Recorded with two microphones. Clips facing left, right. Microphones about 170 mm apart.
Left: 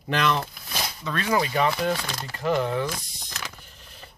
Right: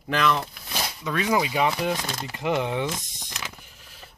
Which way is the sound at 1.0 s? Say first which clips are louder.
Right 1 dB; 15° right (ahead or behind).